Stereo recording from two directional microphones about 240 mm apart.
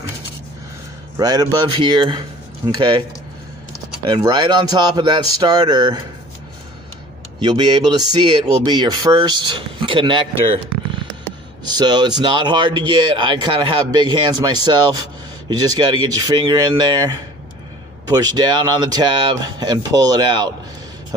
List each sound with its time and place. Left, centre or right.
1.1 s speech: centre
4.0 s speech: centre
7.3 s speech: centre
11.6 s a man's voice: centre